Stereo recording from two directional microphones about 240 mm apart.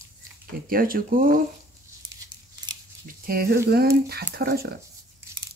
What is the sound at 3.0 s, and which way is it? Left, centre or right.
Speech, right.